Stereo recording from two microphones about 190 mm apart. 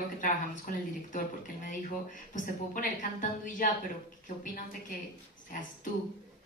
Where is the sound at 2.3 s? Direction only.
40° left (ahead or behind).